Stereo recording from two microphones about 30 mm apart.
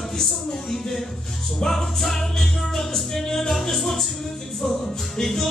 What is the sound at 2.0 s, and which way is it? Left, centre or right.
Music, centre.